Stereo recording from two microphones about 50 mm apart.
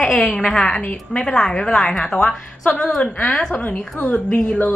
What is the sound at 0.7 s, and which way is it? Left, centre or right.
A woman's voice, left.